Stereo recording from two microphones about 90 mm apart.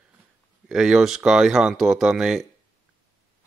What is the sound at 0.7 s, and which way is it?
Speech, 10° right (ahead or behind).